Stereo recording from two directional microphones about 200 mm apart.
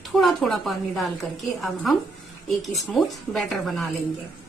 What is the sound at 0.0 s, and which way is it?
A woman's voice, centre (ahead or behind).